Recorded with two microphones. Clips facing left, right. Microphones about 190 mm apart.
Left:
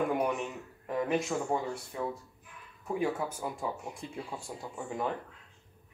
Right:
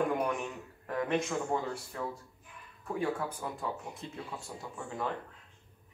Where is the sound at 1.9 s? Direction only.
10° left (ahead or behind).